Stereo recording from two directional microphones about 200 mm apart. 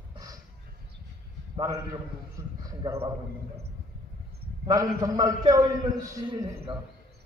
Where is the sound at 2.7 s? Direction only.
15° right (ahead or behind).